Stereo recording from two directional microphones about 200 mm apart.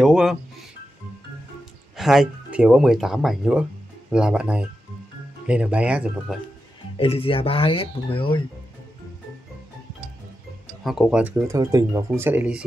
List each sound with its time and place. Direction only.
0.0 s music: centre (ahead or behind)
2.0 s speech: centre (ahead or behind)
7.0 s speech: 30° left (ahead or behind)
10.8 s speech: centre (ahead or behind)